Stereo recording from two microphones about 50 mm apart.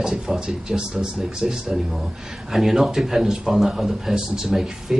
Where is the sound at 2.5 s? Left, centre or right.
Centre.